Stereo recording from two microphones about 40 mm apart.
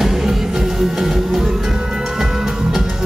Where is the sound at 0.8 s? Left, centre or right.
Centre.